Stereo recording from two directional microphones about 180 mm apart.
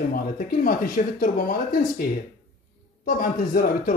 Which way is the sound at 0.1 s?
50° left (ahead or behind).